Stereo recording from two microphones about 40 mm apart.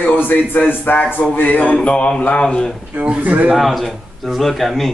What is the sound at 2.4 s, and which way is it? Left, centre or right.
Speech, centre.